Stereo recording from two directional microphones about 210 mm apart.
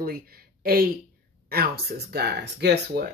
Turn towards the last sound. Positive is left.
turn(degrees=-50)  # may be behind; listen again after turning